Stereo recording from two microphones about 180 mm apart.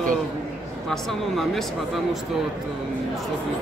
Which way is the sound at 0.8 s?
Centre (ahead or behind).